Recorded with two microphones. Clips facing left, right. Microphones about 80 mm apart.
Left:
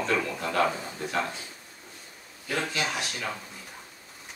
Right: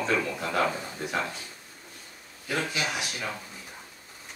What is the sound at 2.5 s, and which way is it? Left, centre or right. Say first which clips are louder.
Speech: even; centre.